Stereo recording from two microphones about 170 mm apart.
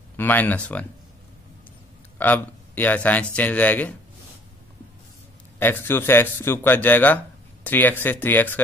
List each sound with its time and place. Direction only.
0.2 s speech: 10° left (ahead or behind)
2.1 s speech: 10° left (ahead or behind)
5.6 s speech: 10° left (ahead or behind)